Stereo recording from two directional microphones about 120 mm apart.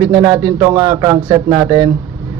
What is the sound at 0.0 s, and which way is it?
A man's voice, 25° right (ahead or behind).